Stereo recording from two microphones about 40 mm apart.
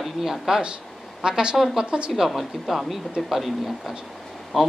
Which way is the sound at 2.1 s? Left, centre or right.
Centre.